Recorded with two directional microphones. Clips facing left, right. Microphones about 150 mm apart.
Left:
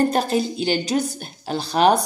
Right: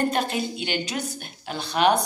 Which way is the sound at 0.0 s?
40° left (ahead or behind).